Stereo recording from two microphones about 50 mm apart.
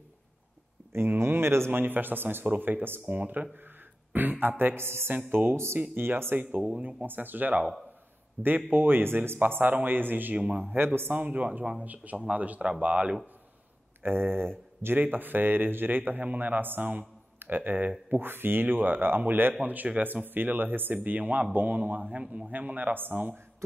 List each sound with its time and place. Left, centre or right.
0.9 s speech: right
1.7 s speech: right
6.4 s speech: right
7.1 s speech: right
9.4 s speech: right
10.3 s speech: right
10.6 s speech: right
14.0 s speech: right